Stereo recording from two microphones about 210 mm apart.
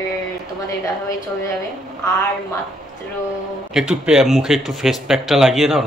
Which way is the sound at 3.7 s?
5° right (ahead or behind).